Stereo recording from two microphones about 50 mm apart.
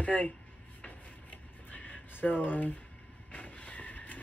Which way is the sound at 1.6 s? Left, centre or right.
Left.